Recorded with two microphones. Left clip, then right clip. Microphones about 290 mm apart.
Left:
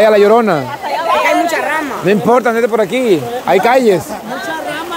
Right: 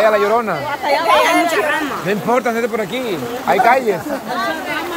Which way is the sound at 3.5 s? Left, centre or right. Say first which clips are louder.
Left 3 dB; left.